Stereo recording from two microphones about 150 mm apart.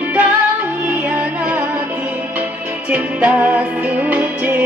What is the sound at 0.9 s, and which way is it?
Music, 10° right (ahead or behind).